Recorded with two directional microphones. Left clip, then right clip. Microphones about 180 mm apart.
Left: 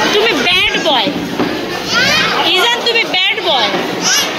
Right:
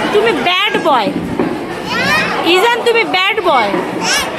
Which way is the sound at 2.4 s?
40° right (ahead or behind).